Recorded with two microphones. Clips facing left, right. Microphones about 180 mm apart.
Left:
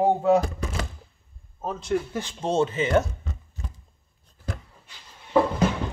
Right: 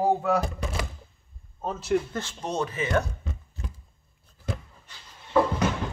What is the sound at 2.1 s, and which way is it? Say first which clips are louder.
Speech: left 2 dB; 15° left (ahead or behind).